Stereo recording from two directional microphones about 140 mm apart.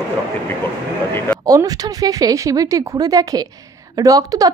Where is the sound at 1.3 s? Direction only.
25° right (ahead or behind).